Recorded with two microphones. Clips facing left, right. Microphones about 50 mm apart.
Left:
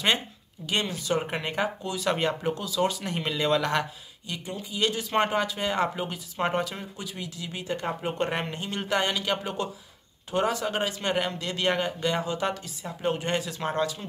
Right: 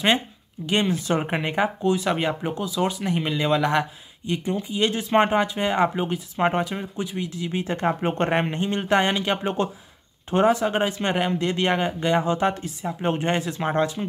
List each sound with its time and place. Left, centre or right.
0.7 s speech: right
2.0 s speech: centre
4.3 s speech: right
7.6 s speech: right
8.3 s speech: right